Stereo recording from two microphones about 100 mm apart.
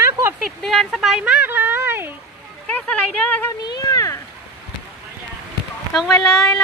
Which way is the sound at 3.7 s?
40° left (ahead or behind).